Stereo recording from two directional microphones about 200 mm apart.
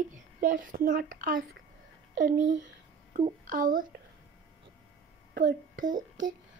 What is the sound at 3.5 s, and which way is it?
Speech, 45° right (ahead or behind).